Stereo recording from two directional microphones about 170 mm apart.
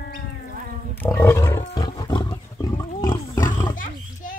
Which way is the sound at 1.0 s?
15° left (ahead or behind).